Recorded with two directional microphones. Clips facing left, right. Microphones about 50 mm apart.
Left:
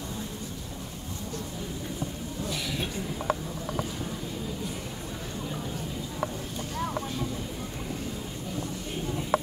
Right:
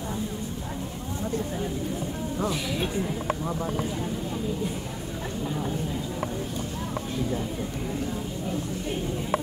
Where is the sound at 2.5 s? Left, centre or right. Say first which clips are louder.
Right 4 dB; centre.